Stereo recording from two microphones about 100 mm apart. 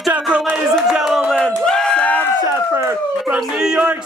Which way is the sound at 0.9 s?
5° right (ahead or behind).